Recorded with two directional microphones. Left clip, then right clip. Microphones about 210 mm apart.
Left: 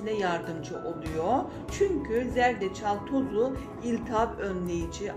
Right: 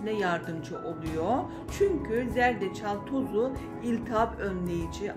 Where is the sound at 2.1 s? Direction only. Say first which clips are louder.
Left 1 dB; 15° right (ahead or behind).